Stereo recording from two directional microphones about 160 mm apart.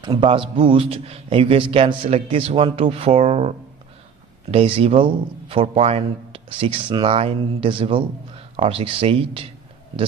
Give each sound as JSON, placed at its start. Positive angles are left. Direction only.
{"t": 0.0, "sound": "a man's voice", "side_deg": -30}